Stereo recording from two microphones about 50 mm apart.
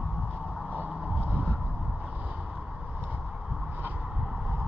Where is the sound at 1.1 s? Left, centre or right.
Right.